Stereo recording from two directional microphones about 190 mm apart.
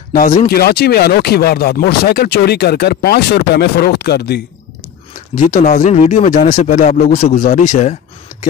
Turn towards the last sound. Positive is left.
turn(degrees=40)  # may be behind; listen again after turning